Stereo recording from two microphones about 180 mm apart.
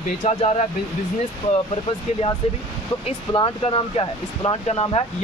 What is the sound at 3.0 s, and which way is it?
Speech, 30° left (ahead or behind).